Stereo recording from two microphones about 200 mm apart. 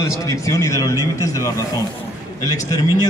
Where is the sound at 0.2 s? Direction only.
15° left (ahead or behind).